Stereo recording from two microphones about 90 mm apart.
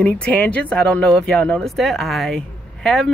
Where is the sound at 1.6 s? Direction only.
Centre (ahead or behind).